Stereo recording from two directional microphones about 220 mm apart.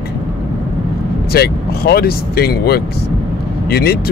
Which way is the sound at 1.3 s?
45° left (ahead or behind).